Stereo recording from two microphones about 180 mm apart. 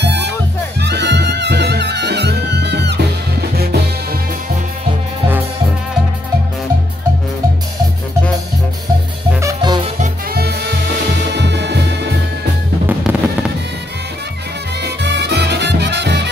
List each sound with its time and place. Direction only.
0.0 s music: 70° right (ahead or behind)
9.4 s music: 20° right (ahead or behind)
10.3 s music: 60° right (ahead or behind)
12.8 s music: 5° right (ahead or behind)
14.8 s music: 70° right (ahead or behind)